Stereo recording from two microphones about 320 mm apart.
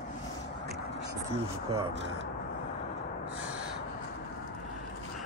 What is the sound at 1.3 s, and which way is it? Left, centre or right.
Speech, centre.